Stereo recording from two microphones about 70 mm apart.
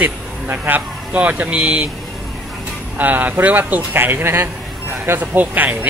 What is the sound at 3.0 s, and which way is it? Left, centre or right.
Speech, right.